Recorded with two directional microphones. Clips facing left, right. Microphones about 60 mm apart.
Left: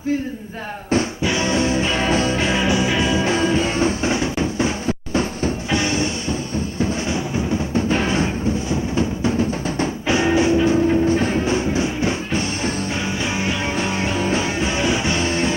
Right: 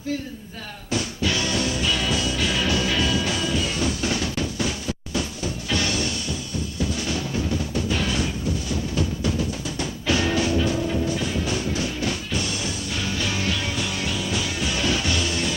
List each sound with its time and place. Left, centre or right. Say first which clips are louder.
1.2 s music: left 5 dB; left